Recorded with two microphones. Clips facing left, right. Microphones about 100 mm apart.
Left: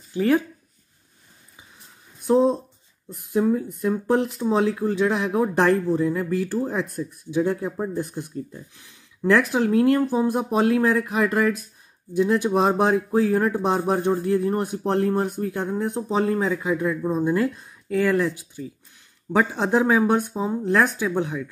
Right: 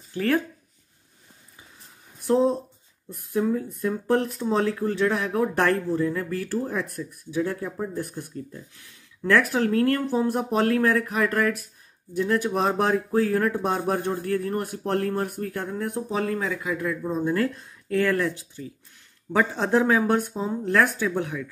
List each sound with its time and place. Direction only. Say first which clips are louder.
0.1 s speech: left 4 dB; 15° left (ahead or behind)
2.2 s speech: left 2 dB; 20° left (ahead or behind)